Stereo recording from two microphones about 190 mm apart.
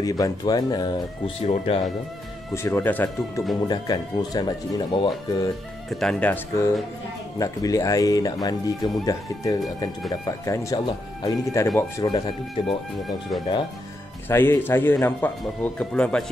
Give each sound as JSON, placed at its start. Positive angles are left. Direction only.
{"t": 0.0, "sound": "speech", "side_deg": 20}
{"t": 2.5, "sound": "speech", "side_deg": 15}
{"t": 3.6, "sound": "speech", "side_deg": 20}
{"t": 5.9, "sound": "speech", "side_deg": 0}
{"t": 14.3, "sound": "speech", "side_deg": 10}